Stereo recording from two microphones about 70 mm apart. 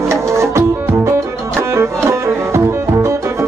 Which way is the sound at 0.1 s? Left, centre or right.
Right.